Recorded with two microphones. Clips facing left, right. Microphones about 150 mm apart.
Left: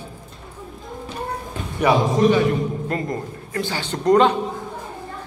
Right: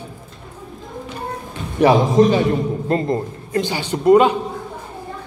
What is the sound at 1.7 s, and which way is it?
A man's voice, 30° right (ahead or behind).